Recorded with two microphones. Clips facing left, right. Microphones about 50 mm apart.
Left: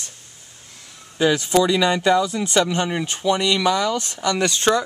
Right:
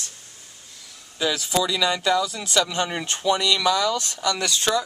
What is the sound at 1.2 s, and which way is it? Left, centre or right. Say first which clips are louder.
Speech: left 6 dB; left.